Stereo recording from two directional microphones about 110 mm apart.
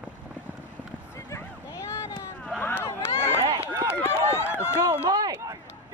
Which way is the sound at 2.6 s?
20° left (ahead or behind).